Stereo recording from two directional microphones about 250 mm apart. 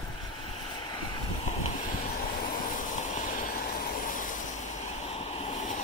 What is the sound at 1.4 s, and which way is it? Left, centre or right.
Vehicle, left.